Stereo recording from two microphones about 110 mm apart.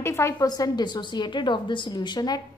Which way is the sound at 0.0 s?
25° left (ahead or behind).